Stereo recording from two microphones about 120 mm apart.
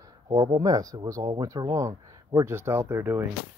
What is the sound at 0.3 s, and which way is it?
Speech, 35° right (ahead or behind).